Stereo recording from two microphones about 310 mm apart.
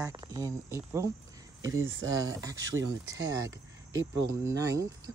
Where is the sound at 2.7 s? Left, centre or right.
Right.